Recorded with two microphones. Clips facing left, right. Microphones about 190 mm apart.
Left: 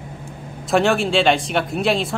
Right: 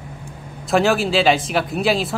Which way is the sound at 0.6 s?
Centre (ahead or behind).